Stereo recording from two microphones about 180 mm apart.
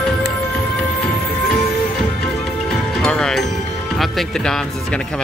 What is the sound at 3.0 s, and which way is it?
Music, 5° left (ahead or behind).